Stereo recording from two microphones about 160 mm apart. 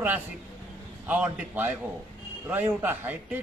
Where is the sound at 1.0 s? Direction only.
10° right (ahead or behind).